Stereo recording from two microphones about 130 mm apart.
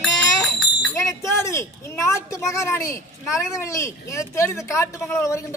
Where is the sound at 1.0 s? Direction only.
25° left (ahead or behind).